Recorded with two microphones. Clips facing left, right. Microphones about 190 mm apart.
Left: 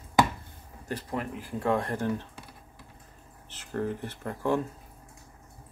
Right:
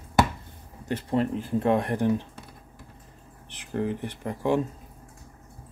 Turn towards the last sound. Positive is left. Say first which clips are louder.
# right 3 dB
turn(degrees=-15)  # may be behind; listen again after turning